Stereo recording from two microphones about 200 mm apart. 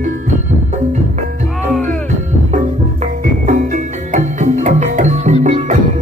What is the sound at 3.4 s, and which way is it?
Music, 35° right (ahead or behind).